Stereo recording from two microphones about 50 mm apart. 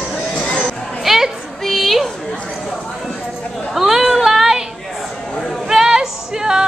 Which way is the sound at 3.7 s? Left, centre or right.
Centre.